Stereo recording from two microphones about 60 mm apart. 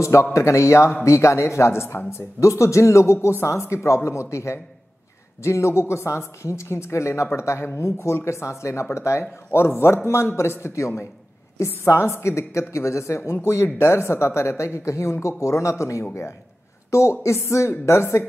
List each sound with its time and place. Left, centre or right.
0.0 s a man's voice: left